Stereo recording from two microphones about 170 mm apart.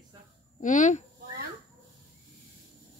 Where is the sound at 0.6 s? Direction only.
45° left (ahead or behind).